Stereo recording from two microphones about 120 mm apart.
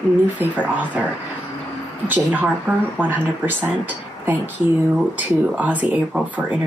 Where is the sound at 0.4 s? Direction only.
15° right (ahead or behind).